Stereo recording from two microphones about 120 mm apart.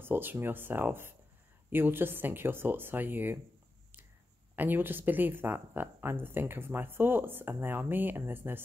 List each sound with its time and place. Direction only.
0.0 s speech: 15° right (ahead or behind)
4.6 s speech: 15° right (ahead or behind)